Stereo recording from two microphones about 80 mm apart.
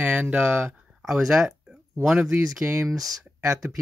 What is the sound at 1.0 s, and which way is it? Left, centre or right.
Speech, centre.